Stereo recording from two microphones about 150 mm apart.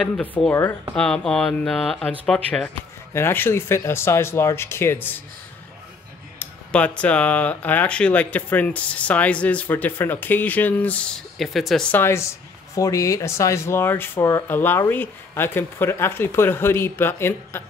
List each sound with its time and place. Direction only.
0.2 s speech: 10° left (ahead or behind)
3.1 s speech: 15° left (ahead or behind)
6.4 s speech: 10° left (ahead or behind)
11.9 s speech: 15° left (ahead or behind)